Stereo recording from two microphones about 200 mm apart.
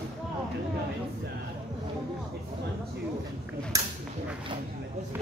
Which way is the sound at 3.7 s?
15° right (ahead or behind).